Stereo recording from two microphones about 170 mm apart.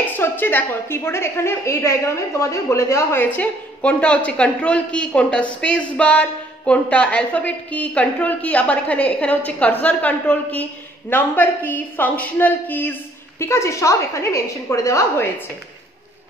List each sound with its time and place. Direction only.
0.2 s a woman's voice: 10° left (ahead or behind)